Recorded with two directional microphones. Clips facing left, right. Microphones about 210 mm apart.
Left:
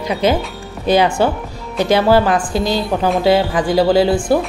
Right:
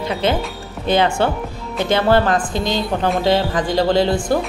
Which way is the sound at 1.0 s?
5° left (ahead or behind).